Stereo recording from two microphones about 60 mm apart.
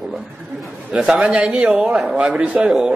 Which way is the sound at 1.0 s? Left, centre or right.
Centre.